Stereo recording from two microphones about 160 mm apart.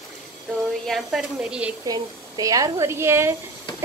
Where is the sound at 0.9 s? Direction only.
5° right (ahead or behind).